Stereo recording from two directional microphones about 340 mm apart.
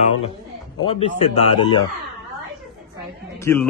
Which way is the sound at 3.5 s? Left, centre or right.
Centre.